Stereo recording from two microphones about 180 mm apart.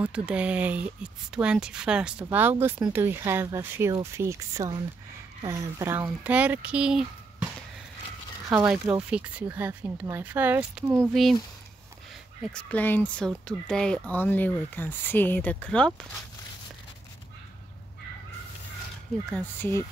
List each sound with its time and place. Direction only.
0.0 s speech: 5° right (ahead or behind)
8.5 s speech: 15° right (ahead or behind)
12.5 s speech: 10° left (ahead or behind)
19.3 s speech: 10° left (ahead or behind)